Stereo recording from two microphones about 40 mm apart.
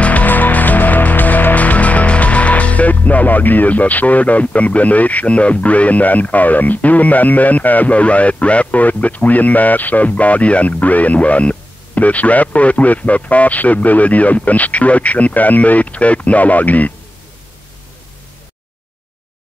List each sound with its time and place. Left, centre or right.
0.0 s music: left